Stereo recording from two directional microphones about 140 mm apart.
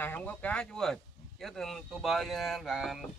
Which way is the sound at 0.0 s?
10° left (ahead or behind).